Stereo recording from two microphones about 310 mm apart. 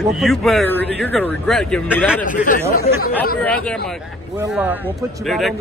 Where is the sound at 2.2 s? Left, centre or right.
Left.